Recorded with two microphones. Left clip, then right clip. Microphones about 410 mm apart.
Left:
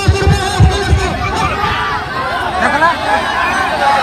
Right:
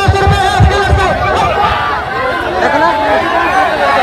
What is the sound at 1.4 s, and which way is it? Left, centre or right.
Chatter, right.